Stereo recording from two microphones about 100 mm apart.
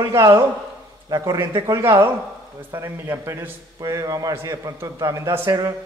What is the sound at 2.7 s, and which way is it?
Speech, 25° right (ahead or behind).